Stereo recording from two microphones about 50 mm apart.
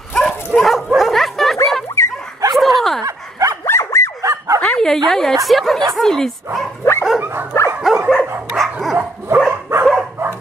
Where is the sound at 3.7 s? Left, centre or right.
Left.